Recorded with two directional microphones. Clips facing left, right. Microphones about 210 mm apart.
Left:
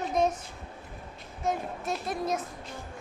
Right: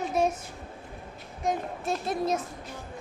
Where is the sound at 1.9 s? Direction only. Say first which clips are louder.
Right 3 dB; 30° right (ahead or behind).